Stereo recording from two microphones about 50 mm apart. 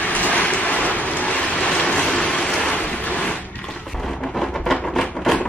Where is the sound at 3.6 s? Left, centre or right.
Centre.